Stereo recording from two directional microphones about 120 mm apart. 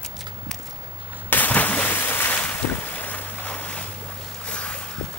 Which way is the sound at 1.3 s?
15° left (ahead or behind).